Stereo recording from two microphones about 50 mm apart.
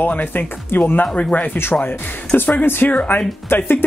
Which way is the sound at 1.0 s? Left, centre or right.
Left.